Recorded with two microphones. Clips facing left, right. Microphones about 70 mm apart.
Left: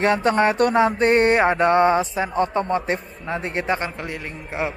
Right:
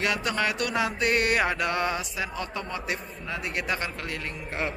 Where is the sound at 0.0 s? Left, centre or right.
Left.